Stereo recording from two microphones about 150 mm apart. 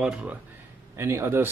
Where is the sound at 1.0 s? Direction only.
15° right (ahead or behind).